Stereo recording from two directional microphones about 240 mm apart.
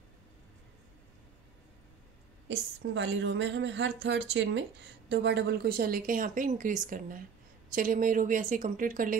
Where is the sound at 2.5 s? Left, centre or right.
Right.